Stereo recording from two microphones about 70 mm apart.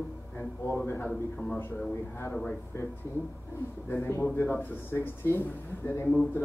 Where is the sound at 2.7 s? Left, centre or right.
Left.